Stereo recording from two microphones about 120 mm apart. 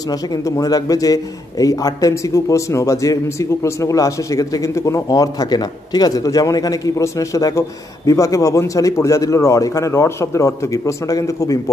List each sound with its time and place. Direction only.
0.1 s a man's voice: 30° left (ahead or behind)